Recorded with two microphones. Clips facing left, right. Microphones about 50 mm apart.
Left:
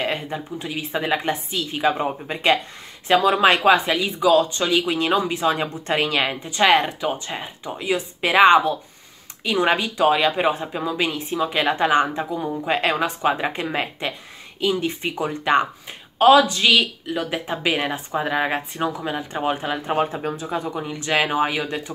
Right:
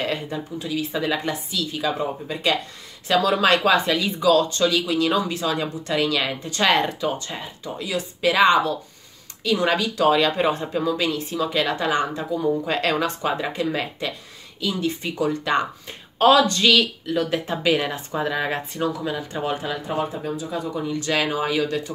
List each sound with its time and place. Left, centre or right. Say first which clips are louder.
0.0 s speech: left 1 dB; left
3.1 s speech: left 2 dB; left
6.5 s speech: left 3 dB; centre
16.2 s speech: left 2 dB; centre; by 19.8 s left
19.9 s speech: left 4 dB; left